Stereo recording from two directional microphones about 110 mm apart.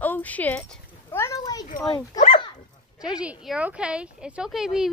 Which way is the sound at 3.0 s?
10° right (ahead or behind).